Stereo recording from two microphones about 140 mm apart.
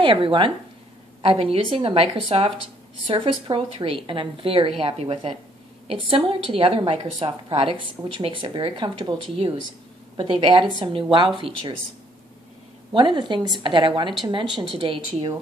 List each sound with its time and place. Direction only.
0.0 s a woman's voice: 35° right (ahead or behind)
12.9 s a woman's voice: 30° right (ahead or behind)